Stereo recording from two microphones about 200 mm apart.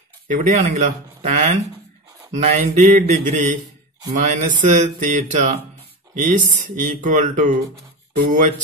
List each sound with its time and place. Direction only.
0.3 s speech: 40° right (ahead or behind)